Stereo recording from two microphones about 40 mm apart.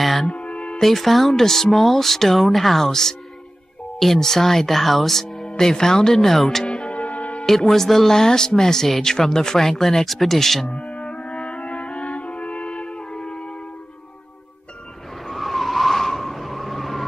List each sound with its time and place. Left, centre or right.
0.0 s music: centre
0.3 s music: left
0.7 s speech: centre
6.6 s music: left
6.9 s music: left
7.4 s speech: centre
10.7 s music: left
15.2 s skidding: centre